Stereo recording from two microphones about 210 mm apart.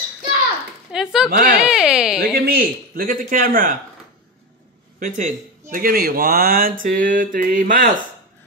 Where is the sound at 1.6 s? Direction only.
5° right (ahead or behind).